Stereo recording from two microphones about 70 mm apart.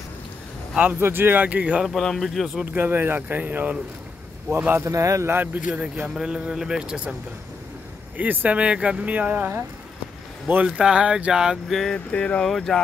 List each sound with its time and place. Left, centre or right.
0.7 s speech: right
1.9 s speech: centre
2.6 s speech: right
4.7 s a man's voice: right
5.3 s speech: right
6.0 s speech: centre
8.2 s speech: right
10.5 s speech: centre
11.9 s speech: centre
12.4 s speech: centre